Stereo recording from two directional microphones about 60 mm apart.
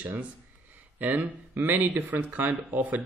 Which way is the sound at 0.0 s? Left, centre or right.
Right.